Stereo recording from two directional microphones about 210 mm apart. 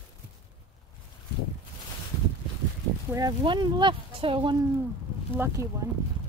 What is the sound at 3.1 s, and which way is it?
Speech, 20° right (ahead or behind).